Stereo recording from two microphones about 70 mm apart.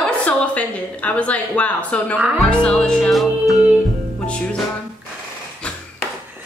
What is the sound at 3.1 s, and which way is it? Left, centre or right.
Music, centre.